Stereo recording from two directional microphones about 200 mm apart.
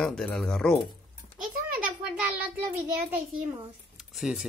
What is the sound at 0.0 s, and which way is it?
Speech, 5° left (ahead or behind).